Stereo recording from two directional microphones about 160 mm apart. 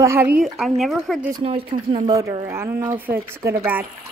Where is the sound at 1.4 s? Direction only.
40° right (ahead or behind).